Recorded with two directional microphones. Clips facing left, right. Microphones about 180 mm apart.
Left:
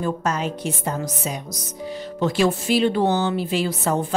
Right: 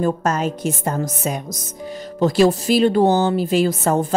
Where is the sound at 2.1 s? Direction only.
40° right (ahead or behind).